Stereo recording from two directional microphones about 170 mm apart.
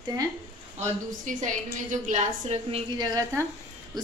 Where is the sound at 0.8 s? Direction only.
45° right (ahead or behind).